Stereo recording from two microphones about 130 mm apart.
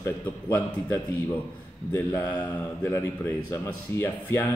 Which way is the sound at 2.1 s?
30° left (ahead or behind).